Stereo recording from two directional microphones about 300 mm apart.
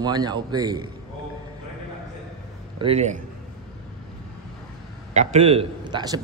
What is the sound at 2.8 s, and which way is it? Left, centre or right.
Speech, centre.